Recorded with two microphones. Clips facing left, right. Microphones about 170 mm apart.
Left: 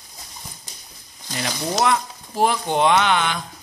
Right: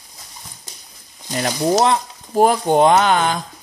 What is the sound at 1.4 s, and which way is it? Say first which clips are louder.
Speech: right 6 dB; 35° right (ahead or behind).